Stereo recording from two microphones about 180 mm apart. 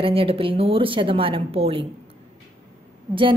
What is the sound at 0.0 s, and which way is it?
A woman's voice, 30° right (ahead or behind).